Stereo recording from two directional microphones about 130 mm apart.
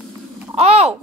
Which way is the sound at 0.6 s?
55° right (ahead or behind).